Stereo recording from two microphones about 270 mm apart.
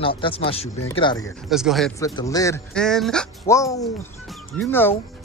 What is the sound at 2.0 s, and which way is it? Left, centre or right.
Speech, centre.